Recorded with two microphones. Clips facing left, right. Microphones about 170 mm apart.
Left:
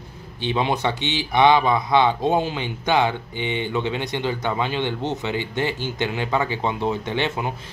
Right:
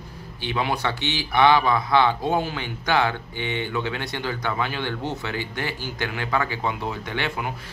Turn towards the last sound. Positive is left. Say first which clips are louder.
# left 4 dB
turn(degrees=25)  # may be behind; listen again after turning